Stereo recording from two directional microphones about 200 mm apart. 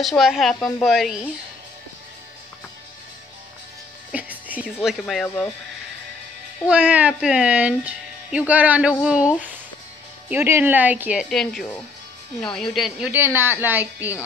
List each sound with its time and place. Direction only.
0.0 s a woman's voice: centre (ahead or behind)
4.1 s music: 5° right (ahead or behind)
4.8 s a woman's voice: centre (ahead or behind)
6.7 s a woman's voice: 5° right (ahead or behind)